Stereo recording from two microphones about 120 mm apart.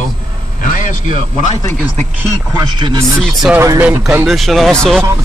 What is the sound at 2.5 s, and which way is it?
Speech, 35° right (ahead or behind).